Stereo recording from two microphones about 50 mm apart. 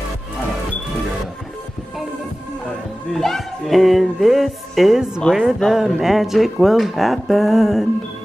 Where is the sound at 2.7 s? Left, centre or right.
Centre.